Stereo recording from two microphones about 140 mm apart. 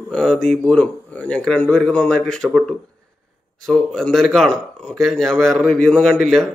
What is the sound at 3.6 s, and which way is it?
A man's voice, 5° left (ahead or behind).